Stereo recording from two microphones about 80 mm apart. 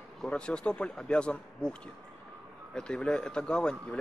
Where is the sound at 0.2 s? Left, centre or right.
Centre.